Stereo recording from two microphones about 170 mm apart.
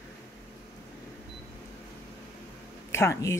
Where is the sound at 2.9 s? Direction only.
15° left (ahead or behind).